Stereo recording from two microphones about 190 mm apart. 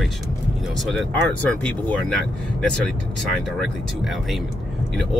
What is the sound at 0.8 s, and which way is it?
Speech, centre (ahead or behind).